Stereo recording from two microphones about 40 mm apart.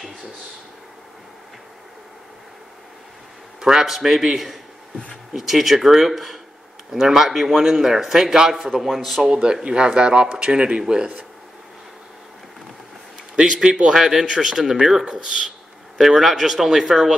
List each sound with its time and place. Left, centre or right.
3.6 s speech: centre
5.3 s speech: centre
9.2 s speech: centre
13.4 s speech: centre
13.9 s speech: centre
16.0 s speech: centre